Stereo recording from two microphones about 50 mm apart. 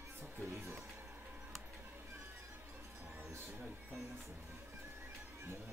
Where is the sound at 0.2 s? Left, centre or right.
Right.